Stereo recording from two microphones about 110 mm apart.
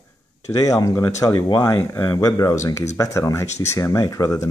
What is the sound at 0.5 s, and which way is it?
Speech, 30° left (ahead or behind).